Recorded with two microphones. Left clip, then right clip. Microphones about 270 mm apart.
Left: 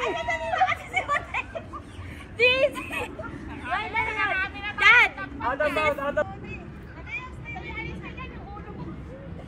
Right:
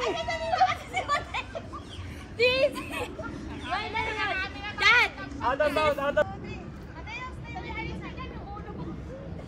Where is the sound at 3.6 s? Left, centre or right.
Centre.